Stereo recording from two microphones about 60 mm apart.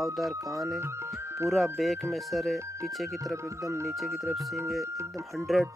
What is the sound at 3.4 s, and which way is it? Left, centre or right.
Speech, right.